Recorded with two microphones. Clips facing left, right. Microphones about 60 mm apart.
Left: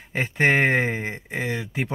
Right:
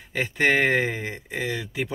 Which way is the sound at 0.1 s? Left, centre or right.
Left.